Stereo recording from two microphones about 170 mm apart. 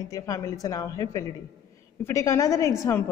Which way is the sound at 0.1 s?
20° left (ahead or behind).